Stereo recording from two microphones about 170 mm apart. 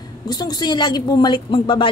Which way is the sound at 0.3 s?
25° left (ahead or behind).